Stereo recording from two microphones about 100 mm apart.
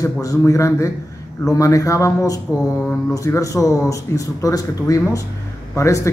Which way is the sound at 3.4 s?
35° left (ahead or behind).